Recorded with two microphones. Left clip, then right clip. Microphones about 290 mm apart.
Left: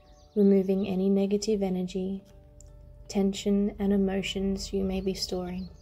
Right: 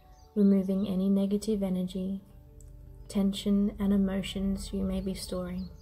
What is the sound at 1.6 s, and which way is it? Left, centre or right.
Speech, left.